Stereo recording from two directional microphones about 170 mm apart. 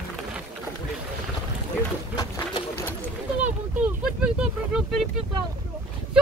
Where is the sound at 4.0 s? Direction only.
5° right (ahead or behind).